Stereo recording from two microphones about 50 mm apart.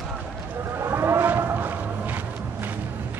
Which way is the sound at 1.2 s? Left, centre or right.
Right.